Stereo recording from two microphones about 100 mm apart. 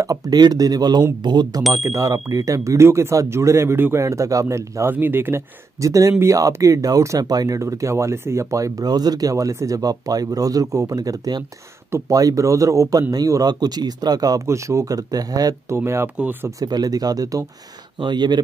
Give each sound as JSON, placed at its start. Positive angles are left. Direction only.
{"t": 0.0, "sound": "speech", "side_deg": -35}
{"t": 1.7, "sound": "speech", "side_deg": -35}
{"t": 5.8, "sound": "speech", "side_deg": -35}
{"t": 15.8, "sound": "speech", "side_deg": -25}
{"t": 16.4, "sound": "speech", "side_deg": -40}
{"t": 17.9, "sound": "speech", "side_deg": -50}